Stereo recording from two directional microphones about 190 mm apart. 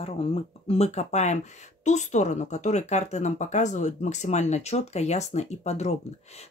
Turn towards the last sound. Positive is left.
turn(degrees=35)  # may be behind; listen again after turning